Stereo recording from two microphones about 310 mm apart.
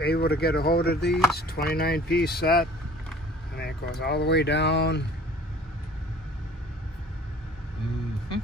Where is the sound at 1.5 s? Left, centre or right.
Left.